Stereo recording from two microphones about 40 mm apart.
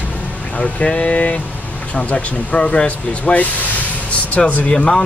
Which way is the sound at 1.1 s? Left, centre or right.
Left.